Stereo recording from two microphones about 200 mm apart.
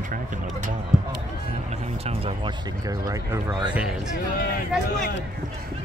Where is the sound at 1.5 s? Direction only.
35° right (ahead or behind).